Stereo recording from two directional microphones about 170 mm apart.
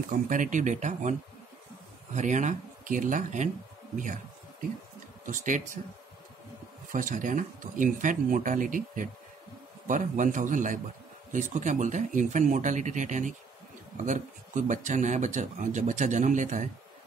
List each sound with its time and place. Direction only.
0.3 s speech: 50° right (ahead or behind)
2.1 s speech: 45° right (ahead or behind)
5.2 s speech: 50° right (ahead or behind)
6.9 s speech: 50° right (ahead or behind)